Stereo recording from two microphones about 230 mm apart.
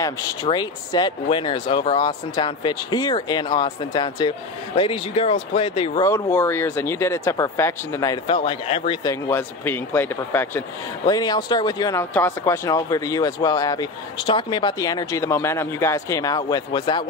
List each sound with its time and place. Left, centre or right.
0.0 s speech: centre